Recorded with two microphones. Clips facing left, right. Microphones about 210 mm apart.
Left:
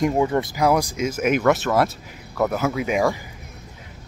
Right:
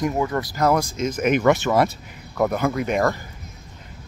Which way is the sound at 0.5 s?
10° left (ahead or behind).